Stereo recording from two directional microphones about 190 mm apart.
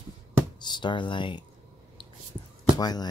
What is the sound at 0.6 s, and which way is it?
Speech, 25° left (ahead or behind).